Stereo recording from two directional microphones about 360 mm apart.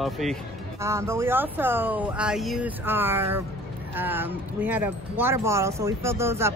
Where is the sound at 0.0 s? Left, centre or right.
Centre.